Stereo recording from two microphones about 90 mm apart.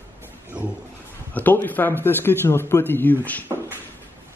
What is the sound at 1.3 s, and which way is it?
A man's voice, 20° left (ahead or behind).